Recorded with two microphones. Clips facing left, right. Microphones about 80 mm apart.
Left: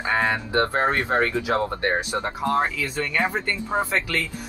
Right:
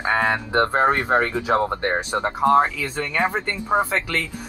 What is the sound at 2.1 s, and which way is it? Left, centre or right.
Speech, right.